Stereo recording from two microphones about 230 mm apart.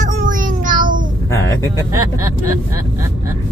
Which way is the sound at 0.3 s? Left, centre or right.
Right.